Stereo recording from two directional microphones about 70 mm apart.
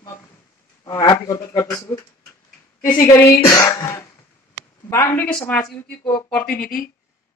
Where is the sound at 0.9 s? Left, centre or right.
Left.